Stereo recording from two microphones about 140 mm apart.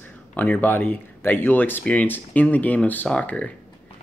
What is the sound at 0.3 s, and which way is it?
Speech, 10° left (ahead or behind).